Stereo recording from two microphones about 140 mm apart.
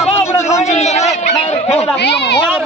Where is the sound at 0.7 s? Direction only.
50° left (ahead or behind).